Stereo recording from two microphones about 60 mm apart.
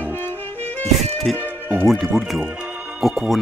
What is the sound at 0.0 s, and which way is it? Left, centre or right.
Music, left.